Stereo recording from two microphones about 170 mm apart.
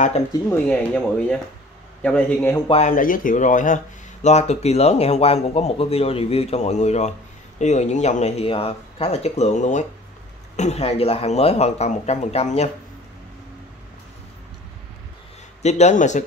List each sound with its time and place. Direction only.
0.7 s speech: 10° left (ahead or behind)
2.9 s speech: 55° left (ahead or behind)
15.6 s speech: 45° left (ahead or behind)